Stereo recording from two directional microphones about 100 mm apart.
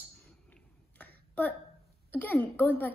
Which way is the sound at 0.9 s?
15° left (ahead or behind).